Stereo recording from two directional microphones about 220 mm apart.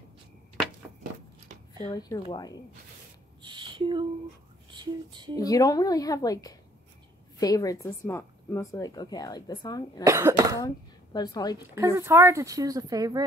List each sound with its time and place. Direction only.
1.5 s a sound: 35° right (ahead or behind)
1.9 s a woman's voice: 20° left (ahead or behind)
3.4 s a sound: 20° right (ahead or behind)
4.6 s speech: 20° right (ahead or behind)
5.3 s a woman's voice: 15° left (ahead or behind)
10.0 s speech: 15° right (ahead or behind)
11.1 s a woman's voice: 20° left (ahead or behind)
11.7 s speech: 10° right (ahead or behind)